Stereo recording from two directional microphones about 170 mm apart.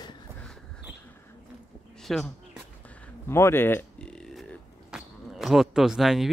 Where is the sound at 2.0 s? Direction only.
Centre (ahead or behind).